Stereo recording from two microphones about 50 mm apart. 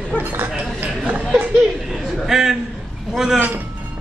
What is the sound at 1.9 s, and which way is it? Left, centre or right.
Speech, centre.